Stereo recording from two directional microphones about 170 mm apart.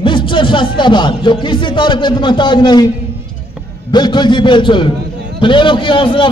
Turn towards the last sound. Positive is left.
turn(degrees=30)  # may be behind; listen again after turning